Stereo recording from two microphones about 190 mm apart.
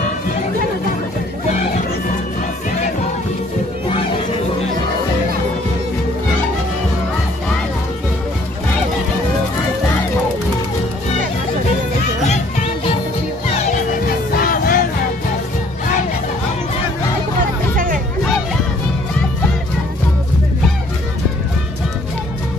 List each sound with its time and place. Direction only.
12.3 s music: 35° left (ahead or behind)
14.0 s music: 50° left (ahead or behind)